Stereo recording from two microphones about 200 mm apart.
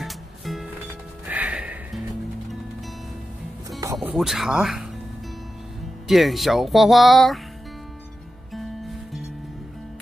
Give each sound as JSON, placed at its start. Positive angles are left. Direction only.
{"t": 0.0, "sound": "music", "side_deg": 0}
{"t": 3.8, "sound": "music", "side_deg": -15}
{"t": 4.1, "sound": "speech", "side_deg": 0}
{"t": 6.0, "sound": "speech", "side_deg": 0}
{"t": 8.5, "sound": "music", "side_deg": 0}